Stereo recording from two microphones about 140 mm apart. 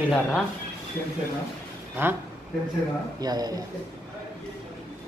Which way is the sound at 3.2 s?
30° right (ahead or behind).